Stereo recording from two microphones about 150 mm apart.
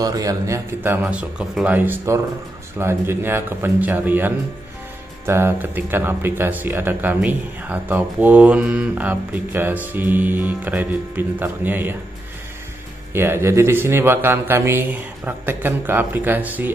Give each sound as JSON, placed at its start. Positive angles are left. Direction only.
{"t": 0.0, "sound": "a man's voice", "side_deg": -25}
{"t": 1.0, "sound": "speech", "side_deg": -5}
{"t": 13.1, "sound": "speech", "side_deg": -15}